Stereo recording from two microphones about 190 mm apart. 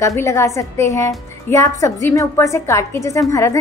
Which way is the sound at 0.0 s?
15° left (ahead or behind).